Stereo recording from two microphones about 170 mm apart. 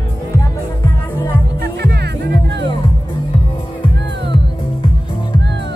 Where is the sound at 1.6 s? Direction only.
75° right (ahead or behind).